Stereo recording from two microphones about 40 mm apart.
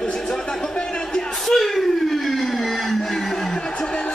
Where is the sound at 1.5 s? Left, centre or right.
Centre.